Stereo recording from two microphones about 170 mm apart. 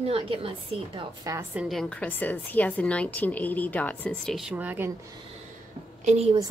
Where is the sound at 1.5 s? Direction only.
Centre (ahead or behind).